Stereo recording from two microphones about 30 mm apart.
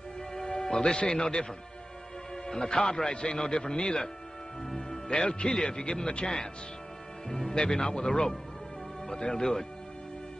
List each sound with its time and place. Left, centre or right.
0.5 s music: centre
0.8 s speech: left
4.7 s music: centre
5.2 s speech: left
7.2 s speech: centre
7.5 s speech: left